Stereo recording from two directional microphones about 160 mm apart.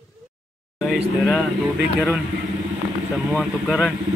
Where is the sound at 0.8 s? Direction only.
Centre (ahead or behind).